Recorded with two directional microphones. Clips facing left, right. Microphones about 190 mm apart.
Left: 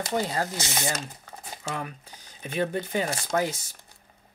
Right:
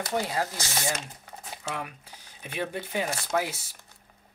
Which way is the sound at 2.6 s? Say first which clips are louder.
Left 3 dB; 10° right (ahead or behind).